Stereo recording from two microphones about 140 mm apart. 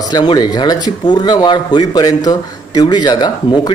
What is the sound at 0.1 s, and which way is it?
A man's voice, 30° left (ahead or behind).